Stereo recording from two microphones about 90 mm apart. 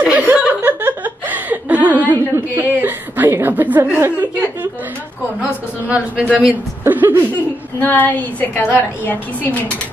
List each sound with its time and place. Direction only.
0.0 s chuckle: 15° right (ahead or behind)
5.4 s a woman's voice: 15° right (ahead or behind)
6.8 s a sound: 20° right (ahead or behind)
7.8 s a woman's voice: 20° left (ahead or behind)